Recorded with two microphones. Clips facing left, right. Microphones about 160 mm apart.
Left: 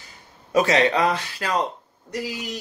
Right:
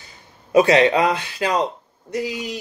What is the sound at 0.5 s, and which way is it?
Speech, 15° right (ahead or behind).